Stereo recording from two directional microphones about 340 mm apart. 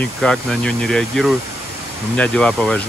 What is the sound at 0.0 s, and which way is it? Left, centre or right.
Speech, centre.